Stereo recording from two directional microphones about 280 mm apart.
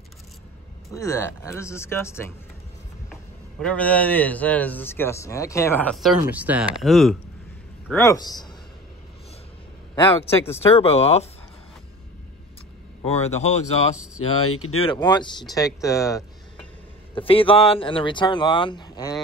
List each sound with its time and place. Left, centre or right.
0.9 s speech: centre
3.5 s speech: centre
7.9 s speech: centre
10.4 s speech: left
13.0 s speech: left
14.1 s speech: left
14.8 s speech: centre